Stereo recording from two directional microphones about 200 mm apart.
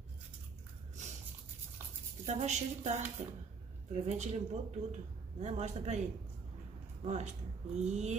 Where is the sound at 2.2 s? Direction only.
35° right (ahead or behind).